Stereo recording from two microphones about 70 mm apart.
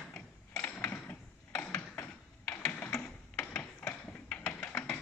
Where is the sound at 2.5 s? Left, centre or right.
Centre.